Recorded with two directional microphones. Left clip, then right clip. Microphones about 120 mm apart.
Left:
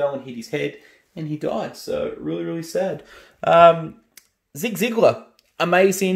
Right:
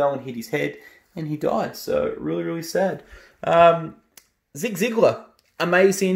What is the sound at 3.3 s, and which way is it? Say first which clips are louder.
Speech: left 3 dB; 15° left (ahead or behind).